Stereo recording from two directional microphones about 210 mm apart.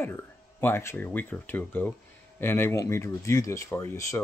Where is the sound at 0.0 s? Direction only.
10° left (ahead or behind).